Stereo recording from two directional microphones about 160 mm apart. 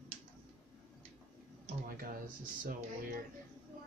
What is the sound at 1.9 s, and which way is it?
Speech, 60° right (ahead or behind).